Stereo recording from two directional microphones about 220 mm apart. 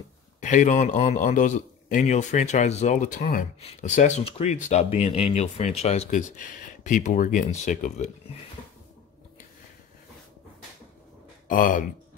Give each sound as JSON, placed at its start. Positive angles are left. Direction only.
{"t": 0.4, "sound": "a man's voice", "side_deg": 35}
{"t": 11.4, "sound": "speech", "side_deg": 40}